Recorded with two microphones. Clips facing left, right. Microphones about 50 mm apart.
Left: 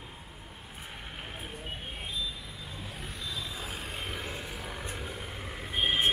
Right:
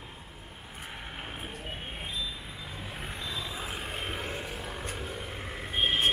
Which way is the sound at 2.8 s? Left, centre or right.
Right.